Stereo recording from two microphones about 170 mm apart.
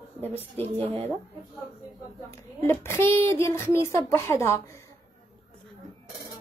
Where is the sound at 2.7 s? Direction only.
15° left (ahead or behind).